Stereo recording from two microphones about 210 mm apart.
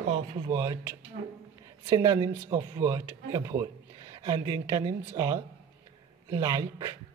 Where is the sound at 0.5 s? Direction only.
15° right (ahead or behind).